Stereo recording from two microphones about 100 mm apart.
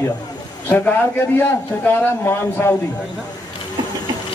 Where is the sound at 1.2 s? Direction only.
25° left (ahead or behind).